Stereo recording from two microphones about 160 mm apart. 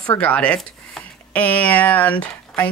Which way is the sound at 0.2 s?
5° left (ahead or behind).